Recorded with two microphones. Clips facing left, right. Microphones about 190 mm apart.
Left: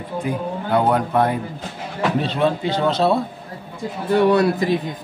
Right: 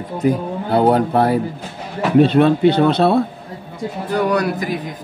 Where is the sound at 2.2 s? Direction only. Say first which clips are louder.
Right 8 dB; 60° right (ahead or behind).